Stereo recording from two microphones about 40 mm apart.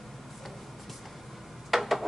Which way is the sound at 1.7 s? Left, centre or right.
Centre.